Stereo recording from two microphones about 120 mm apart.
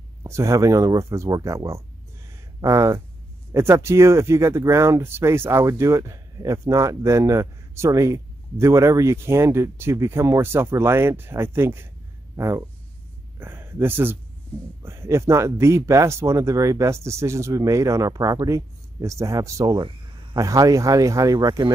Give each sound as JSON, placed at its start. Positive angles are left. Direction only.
{"t": 0.2, "sound": "speech", "side_deg": -25}